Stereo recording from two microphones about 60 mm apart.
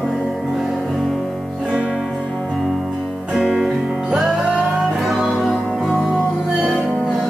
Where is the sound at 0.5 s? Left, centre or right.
Centre.